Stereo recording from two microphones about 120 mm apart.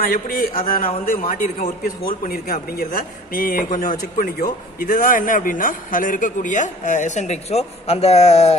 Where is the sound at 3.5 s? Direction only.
90° left; by 8.5 s 65° left (ahead or behind).